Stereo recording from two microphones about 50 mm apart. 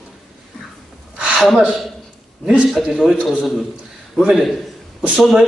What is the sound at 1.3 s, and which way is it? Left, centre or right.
Speech, centre.